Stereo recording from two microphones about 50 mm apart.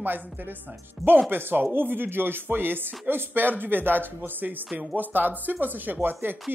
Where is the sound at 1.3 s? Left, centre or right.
Right.